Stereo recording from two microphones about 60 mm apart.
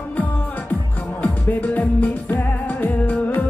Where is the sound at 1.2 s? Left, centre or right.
Left.